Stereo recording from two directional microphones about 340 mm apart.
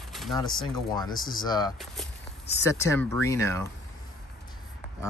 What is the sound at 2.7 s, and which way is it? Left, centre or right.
Speech, centre.